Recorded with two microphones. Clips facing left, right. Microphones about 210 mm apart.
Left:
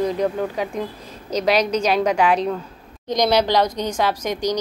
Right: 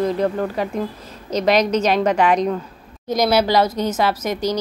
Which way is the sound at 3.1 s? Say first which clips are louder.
Right 1 dB; 5° right (ahead or behind).